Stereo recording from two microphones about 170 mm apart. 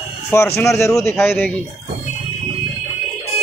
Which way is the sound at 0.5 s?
15° left (ahead or behind).